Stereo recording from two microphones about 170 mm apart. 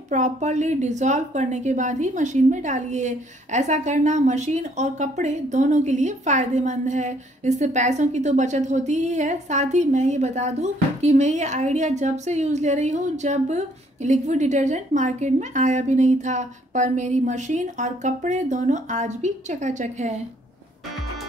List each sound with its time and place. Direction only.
0.1 s a woman's voice: 45° right (ahead or behind)